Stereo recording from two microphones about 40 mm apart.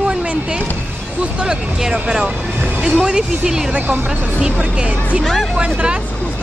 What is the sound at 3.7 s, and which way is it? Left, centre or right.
Speech, right.